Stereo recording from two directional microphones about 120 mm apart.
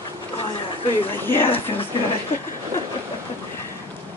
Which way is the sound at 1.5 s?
50° left (ahead or behind).